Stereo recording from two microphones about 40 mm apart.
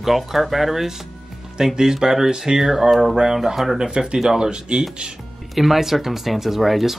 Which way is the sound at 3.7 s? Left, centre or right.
Centre.